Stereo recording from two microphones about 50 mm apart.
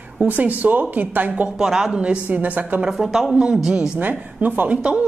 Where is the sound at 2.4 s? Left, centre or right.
Right.